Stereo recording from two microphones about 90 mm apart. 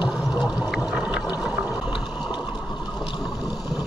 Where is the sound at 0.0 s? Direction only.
10° right (ahead or behind).